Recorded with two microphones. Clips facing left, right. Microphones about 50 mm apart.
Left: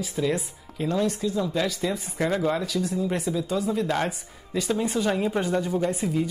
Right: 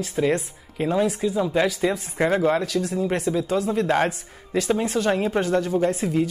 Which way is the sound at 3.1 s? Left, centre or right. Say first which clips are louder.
Right 3 dB; centre.